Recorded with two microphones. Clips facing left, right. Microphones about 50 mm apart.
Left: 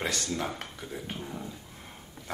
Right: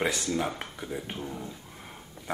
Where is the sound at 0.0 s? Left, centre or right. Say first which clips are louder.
Right 3 dB; centre.